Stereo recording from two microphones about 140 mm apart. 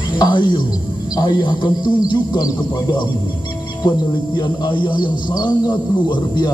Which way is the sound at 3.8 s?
30° left (ahead or behind).